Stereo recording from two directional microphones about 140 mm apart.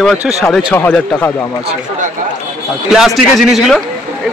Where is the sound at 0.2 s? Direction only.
10° right (ahead or behind).